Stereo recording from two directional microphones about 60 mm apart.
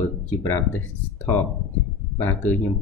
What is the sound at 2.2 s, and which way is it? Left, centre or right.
Speech, left.